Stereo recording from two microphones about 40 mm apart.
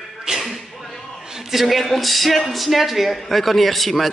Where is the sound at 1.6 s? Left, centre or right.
Centre.